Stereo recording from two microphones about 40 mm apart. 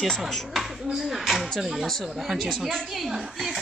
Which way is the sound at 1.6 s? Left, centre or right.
Centre.